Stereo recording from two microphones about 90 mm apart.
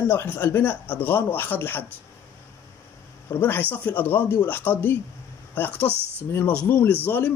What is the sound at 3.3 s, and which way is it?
Speech, 25° left (ahead or behind).